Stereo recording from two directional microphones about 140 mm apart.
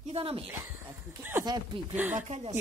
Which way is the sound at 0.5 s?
15° right (ahead or behind).